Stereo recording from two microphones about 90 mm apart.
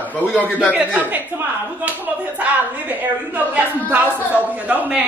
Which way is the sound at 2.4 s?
15° right (ahead or behind).